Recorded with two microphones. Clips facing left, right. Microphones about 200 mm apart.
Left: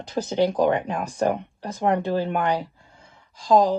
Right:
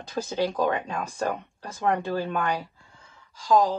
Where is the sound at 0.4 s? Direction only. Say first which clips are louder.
Left 5 dB; 15° left (ahead or behind).